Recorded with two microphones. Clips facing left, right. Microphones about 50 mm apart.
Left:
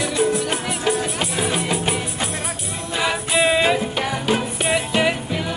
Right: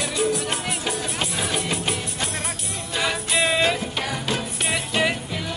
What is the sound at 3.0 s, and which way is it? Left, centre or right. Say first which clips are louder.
Jingle bell: left 4 dB; centre.